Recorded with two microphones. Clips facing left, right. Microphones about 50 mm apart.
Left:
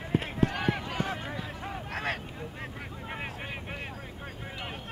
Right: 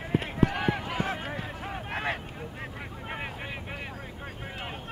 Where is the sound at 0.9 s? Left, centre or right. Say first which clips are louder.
Right 2 dB; centre.